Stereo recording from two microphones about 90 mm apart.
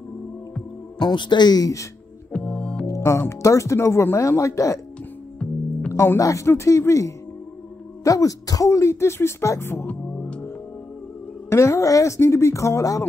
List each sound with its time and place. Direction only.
0.9 s speech: 60° left (ahead or behind); by 1.9 s 40° left (ahead or behind)
2.3 s organ: 15° left (ahead or behind)
2.9 s speech: 30° left (ahead or behind)
5.4 s music: 10° left (ahead or behind)
6.1 s speech: 35° left (ahead or behind); by 10.5 s 20° left (ahead or behind)
11.4 s speech: 30° left (ahead or behind)